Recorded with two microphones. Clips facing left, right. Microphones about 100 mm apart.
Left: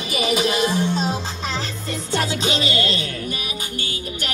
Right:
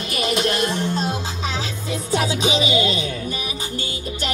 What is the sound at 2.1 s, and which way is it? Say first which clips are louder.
Music: right 2 dB; 10° right (ahead or behind).